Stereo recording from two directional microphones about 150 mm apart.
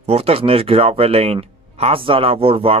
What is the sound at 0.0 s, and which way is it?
Speech, 40° right (ahead or behind).